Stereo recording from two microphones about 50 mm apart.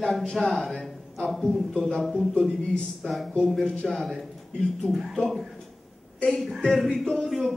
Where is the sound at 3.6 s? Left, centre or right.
Centre.